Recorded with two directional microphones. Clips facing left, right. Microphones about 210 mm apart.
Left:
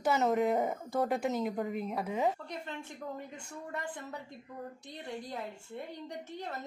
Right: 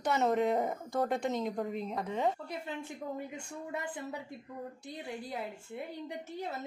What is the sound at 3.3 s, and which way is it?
A woman's voice, 10° right (ahead or behind).